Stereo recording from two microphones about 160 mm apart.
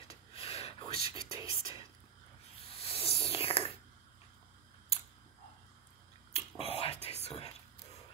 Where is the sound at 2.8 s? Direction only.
35° left (ahead or behind).